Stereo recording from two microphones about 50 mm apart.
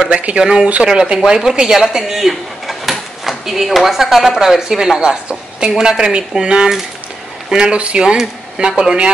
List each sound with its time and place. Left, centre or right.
0.4 s speech: centre